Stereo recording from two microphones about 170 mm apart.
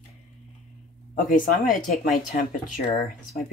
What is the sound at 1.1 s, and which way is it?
Speech, 55° left (ahead or behind).